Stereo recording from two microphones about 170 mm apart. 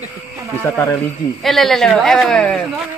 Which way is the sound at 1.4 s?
Centre (ahead or behind).